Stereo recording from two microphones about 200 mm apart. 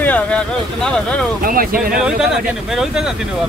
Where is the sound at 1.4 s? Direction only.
45° right (ahead or behind).